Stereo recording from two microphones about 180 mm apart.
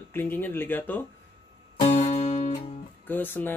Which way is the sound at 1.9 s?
40° left (ahead or behind).